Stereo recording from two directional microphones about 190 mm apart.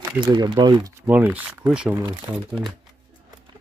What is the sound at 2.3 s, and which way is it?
Speech, 15° right (ahead or behind).